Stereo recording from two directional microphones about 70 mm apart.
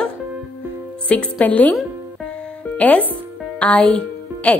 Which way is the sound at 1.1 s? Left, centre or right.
Centre.